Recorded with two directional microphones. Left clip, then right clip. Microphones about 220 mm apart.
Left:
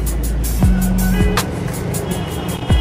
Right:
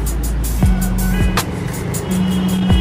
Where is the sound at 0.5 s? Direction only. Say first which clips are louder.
Left 2 dB; centre (ahead or behind).